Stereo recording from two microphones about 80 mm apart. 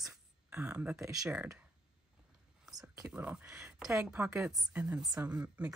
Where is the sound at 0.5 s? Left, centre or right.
Centre.